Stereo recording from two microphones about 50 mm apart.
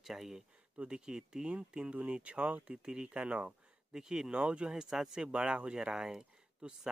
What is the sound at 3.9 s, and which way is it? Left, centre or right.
Speech, centre.